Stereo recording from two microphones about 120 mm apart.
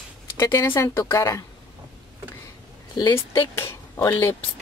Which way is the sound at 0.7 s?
20° left (ahead or behind).